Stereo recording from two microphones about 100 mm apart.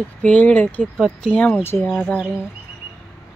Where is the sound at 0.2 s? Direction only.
15° left (ahead or behind).